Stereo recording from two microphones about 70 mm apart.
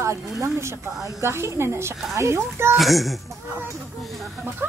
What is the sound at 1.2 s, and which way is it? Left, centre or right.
A woman's voice, right.